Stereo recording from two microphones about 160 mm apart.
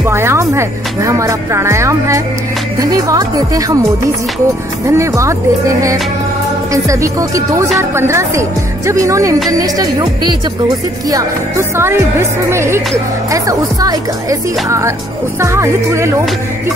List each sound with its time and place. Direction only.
0.0 s a woman's voice: 15° right (ahead or behind)
4.8 s a woman's voice: 20° right (ahead or behind)
6.7 s a woman's voice: 20° right (ahead or behind)